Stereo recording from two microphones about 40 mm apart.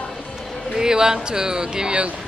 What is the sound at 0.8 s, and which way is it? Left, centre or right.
Speech, centre.